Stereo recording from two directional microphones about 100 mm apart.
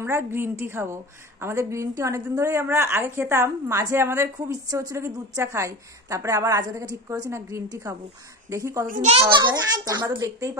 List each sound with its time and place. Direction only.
0.0 s a woman's voice: 25° right (ahead or behind)
9.3 s a child's voice: 45° right (ahead or behind)
10.2 s a woman's voice: 30° right (ahead or behind)